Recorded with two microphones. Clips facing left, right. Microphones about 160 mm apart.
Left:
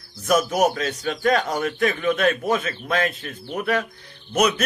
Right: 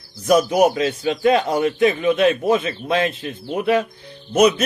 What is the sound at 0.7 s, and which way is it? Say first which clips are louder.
A man's voice: right 5 dB; 15° right (ahead or behind).